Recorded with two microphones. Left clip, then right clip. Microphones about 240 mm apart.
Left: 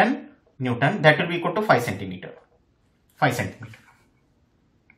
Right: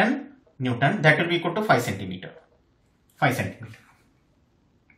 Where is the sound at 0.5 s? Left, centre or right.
Centre.